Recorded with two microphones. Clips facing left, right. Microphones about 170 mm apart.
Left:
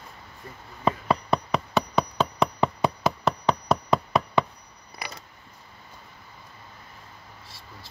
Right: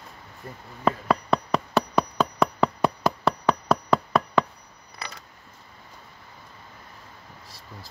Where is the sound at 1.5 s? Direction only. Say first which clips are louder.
Right 1 dB; 5° right (ahead or behind).